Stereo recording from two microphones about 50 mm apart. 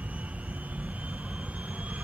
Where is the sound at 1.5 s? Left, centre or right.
Right.